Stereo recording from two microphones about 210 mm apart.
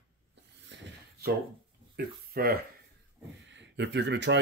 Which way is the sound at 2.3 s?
45° right (ahead or behind).